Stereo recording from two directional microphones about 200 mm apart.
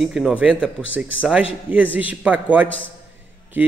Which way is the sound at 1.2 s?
5° right (ahead or behind).